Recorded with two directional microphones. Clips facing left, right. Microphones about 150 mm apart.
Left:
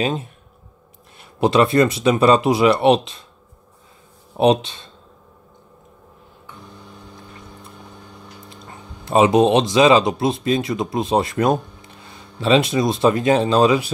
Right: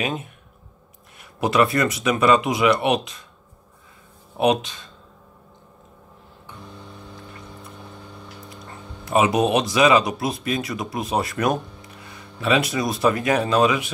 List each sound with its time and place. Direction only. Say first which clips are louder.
0.0 s speech: left 4 dB; 30° left (ahead or behind)
4.4 s speech: left 4 dB; 25° left (ahead or behind)
8.5 s speech: even; 25° left (ahead or behind)